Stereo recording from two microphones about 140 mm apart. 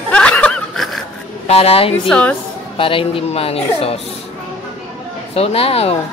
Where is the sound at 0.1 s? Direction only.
10° left (ahead or behind).